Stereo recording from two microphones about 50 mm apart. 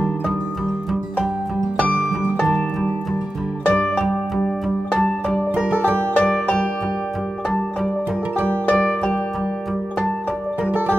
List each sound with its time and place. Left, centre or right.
1.8 s music: left
4.6 s music: centre
6.1 s music: left